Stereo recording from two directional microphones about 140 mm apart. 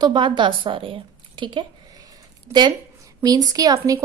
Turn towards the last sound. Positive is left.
turn(degrees=-25)  # may be behind; listen again after turning